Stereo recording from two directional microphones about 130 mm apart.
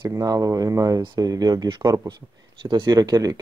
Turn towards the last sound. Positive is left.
turn(degrees=-30)  # may be behind; listen again after turning